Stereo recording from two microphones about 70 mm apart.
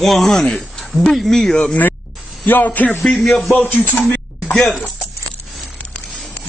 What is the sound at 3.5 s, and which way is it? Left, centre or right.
Speech, left.